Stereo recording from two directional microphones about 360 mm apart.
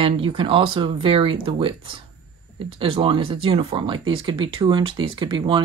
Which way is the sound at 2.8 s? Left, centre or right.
Centre.